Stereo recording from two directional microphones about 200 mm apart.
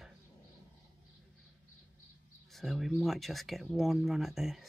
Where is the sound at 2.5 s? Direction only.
Centre (ahead or behind).